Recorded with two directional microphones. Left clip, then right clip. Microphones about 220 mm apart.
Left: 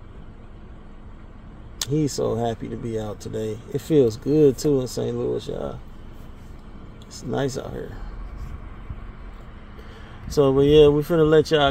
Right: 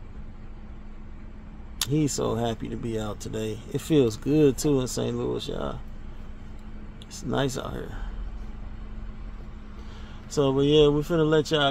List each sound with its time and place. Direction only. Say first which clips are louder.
1.8 s speech: left 3 dB; centre (ahead or behind)
7.1 s speech: left 2 dB; centre (ahead or behind)
10.2 s speech: left 5 dB; 5° left (ahead or behind)